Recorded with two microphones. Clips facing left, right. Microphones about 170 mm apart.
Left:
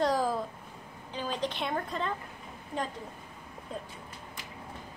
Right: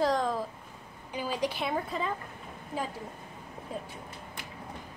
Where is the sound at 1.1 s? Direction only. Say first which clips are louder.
Right 2 dB; 10° right (ahead or behind).